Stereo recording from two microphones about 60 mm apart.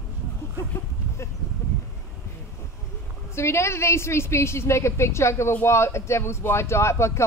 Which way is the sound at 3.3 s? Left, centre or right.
Left.